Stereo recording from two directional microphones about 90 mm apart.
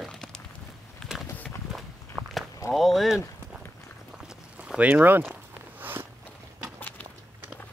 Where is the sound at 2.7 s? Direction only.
Centre (ahead or behind).